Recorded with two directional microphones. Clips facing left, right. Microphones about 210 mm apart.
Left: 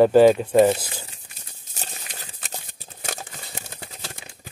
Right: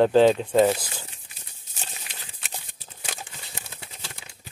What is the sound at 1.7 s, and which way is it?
Crumpling, 40° left (ahead or behind).